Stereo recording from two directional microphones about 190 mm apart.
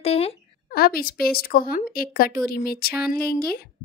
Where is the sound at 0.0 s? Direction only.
30° left (ahead or behind).